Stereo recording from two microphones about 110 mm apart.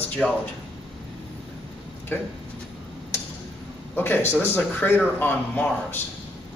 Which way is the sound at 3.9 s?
20° left (ahead or behind).